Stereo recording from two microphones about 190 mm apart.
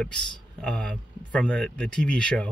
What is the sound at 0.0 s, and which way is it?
Speech, 5° left (ahead or behind).